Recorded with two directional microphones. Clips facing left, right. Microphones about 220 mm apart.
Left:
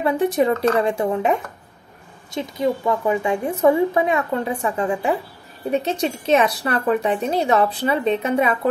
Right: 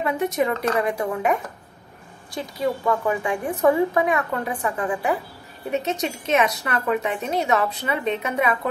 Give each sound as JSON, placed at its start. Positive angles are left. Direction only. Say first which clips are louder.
{"t": 0.0, "sound": "a woman's voice", "louder": "left 4 dB", "side_deg": 30}